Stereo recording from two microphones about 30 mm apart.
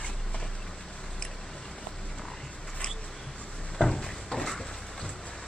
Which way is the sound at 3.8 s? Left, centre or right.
Centre.